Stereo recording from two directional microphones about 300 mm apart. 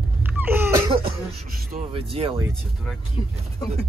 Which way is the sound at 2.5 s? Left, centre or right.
Centre.